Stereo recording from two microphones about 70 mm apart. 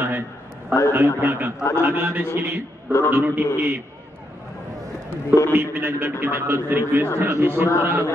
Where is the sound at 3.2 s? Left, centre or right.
Right.